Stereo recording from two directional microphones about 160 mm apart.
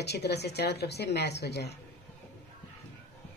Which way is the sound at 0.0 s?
90° left.